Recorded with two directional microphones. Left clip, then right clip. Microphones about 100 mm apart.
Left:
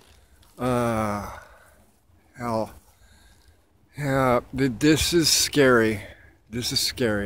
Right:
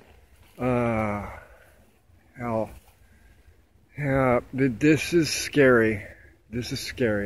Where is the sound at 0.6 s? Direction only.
5° left (ahead or behind).